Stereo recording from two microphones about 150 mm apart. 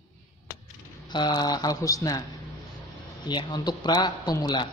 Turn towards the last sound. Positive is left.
turn(degrees=25)  # may be behind; listen again after turning